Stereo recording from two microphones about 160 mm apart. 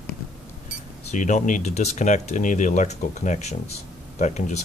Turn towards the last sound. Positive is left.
turn(degrees=45)  # may be behind; listen again after turning